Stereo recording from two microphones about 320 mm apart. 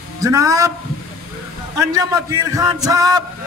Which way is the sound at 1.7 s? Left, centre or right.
Centre.